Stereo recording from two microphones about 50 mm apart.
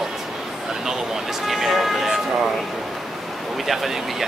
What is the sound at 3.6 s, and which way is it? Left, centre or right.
Speech, centre.